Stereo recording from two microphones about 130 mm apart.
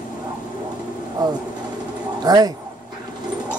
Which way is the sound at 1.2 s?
35° right (ahead or behind).